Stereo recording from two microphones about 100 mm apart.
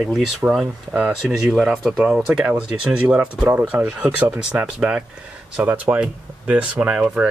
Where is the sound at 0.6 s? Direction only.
10° right (ahead or behind).